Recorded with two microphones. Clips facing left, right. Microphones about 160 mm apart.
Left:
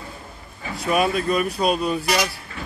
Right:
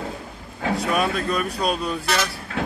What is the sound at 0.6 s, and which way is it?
Vehicle, 90° right.